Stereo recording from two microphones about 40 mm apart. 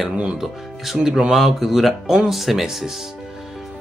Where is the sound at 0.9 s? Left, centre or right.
Centre.